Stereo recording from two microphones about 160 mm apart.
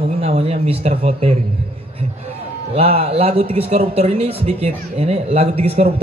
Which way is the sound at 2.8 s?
40° right (ahead or behind).